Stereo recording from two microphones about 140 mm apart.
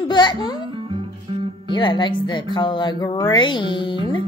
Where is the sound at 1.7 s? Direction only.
35° left (ahead or behind).